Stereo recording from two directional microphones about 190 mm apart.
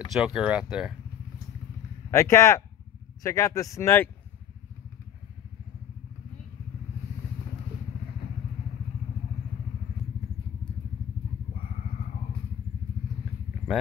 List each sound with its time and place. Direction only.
0.1 s speech: 5° right (ahead or behind)
2.0 s speech: 15° left (ahead or behind)